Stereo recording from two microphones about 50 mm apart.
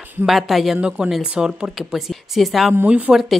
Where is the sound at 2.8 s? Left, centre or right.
Right.